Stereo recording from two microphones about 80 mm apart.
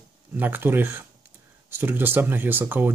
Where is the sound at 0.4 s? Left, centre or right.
Right.